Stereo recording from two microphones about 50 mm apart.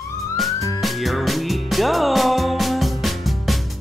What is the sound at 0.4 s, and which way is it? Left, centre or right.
Music, centre.